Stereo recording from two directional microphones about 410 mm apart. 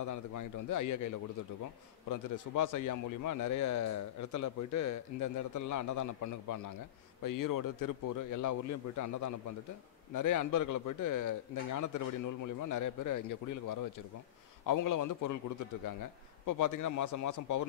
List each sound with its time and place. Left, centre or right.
0.0 s a man's voice: left